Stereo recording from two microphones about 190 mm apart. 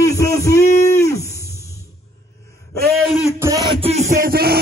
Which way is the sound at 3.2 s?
15° right (ahead or behind).